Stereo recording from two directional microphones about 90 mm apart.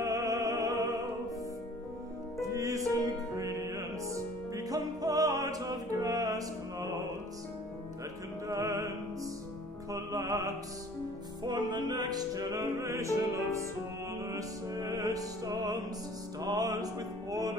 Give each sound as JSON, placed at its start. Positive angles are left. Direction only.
{"t": 0.0, "sound": "music", "side_deg": -35}
{"t": 2.4, "sound": "music", "side_deg": -35}
{"t": 8.5, "sound": "music", "side_deg": -40}
{"t": 11.4, "sound": "music", "side_deg": -55}
{"t": 14.2, "sound": "music", "side_deg": -40}